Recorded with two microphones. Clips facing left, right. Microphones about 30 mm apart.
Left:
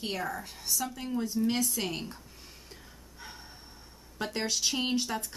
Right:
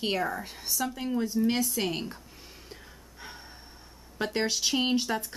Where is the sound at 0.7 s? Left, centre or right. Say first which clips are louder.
Right 3 dB; centre.